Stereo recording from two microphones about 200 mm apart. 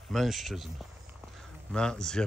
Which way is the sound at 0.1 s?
Centre (ahead or behind).